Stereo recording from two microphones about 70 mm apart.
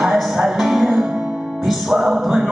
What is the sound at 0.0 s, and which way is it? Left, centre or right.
Music, centre.